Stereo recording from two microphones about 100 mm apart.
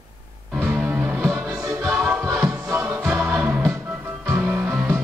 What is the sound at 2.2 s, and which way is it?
Music, 35° right (ahead or behind).